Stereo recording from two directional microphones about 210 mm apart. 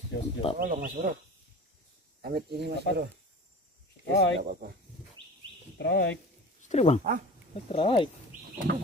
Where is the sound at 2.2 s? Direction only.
50° right (ahead or behind).